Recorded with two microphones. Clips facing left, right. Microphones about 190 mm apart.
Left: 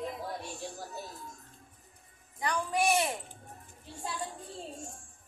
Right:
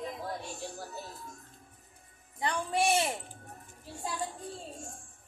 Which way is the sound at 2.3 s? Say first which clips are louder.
Even; 25° right (ahead or behind).